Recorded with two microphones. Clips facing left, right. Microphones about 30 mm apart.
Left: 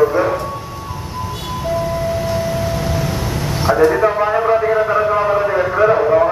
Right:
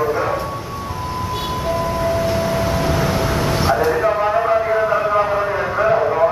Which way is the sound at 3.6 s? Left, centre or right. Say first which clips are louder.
Left 5 dB; centre.